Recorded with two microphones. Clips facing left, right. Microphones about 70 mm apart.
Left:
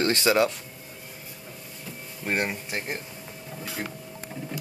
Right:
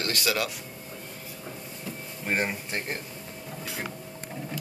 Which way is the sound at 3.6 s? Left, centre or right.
Centre.